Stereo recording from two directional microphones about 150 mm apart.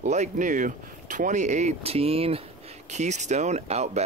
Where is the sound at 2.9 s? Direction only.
50° right (ahead or behind).